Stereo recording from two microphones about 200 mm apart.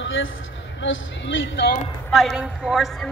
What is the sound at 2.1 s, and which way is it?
Speech, centre (ahead or behind).